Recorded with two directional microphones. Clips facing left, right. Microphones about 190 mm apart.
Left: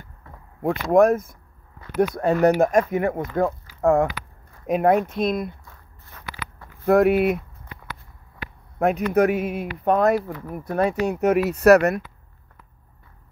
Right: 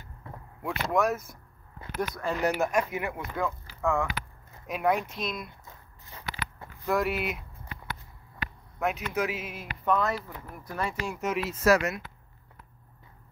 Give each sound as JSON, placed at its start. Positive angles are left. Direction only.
{"t": 0.6, "sound": "speech", "side_deg": 55}
{"t": 5.7, "sound": "walk", "side_deg": -15}
{"t": 6.9, "sound": "speech", "side_deg": 60}
{"t": 8.7, "sound": "speech", "side_deg": 55}